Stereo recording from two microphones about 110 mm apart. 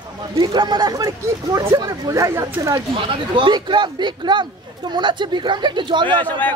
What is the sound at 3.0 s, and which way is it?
A woman's voice, 50° right (ahead or behind).